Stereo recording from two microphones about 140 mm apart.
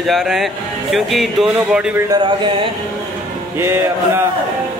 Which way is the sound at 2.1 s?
35° right (ahead or behind).